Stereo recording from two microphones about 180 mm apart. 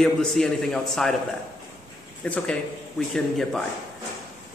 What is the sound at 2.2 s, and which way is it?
Speech, 10° left (ahead or behind).